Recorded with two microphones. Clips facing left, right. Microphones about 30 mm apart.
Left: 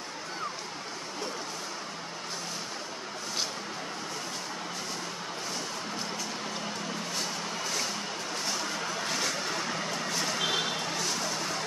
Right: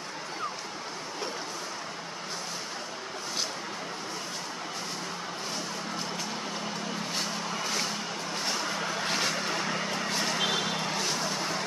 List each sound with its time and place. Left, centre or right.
9.0 s vehicle: right
9.4 s vehicle: centre
10.5 s vehicle: centre